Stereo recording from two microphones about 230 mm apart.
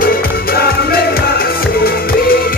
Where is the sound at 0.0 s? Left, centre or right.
Left.